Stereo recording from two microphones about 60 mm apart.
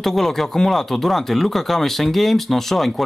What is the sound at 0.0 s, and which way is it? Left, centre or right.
Speech, centre.